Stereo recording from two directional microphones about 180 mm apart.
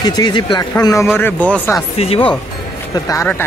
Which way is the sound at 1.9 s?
30° left (ahead or behind).